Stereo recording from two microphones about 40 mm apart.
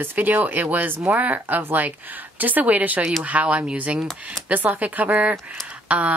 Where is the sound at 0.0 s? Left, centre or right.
Right.